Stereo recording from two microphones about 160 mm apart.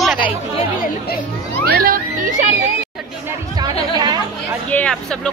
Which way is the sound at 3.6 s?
25° right (ahead or behind).